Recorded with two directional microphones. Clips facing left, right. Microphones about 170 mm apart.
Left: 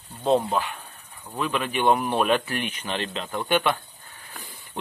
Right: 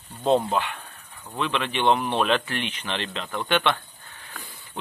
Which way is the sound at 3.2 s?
10° left (ahead or behind).